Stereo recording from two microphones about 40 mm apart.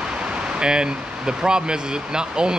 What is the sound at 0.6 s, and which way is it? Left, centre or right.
Speech, right.